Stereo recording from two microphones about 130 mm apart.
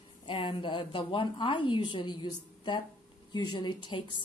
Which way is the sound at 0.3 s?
40° left (ahead or behind).